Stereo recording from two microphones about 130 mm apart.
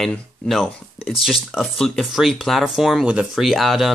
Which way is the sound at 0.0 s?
Centre (ahead or behind).